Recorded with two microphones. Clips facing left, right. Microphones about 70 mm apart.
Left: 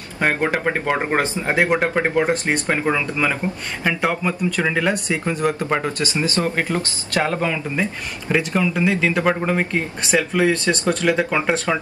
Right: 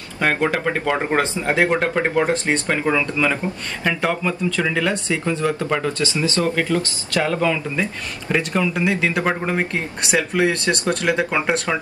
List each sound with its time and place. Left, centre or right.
0.2 s speech: left
8.3 s speech: centre
10.6 s speech: left
11.2 s speech: centre